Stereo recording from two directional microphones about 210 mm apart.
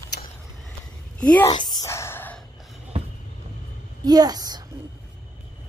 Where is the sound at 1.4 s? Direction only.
20° left (ahead or behind).